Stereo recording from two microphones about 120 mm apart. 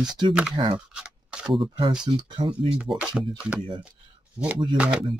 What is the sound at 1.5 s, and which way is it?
Speech, 40° right (ahead or behind).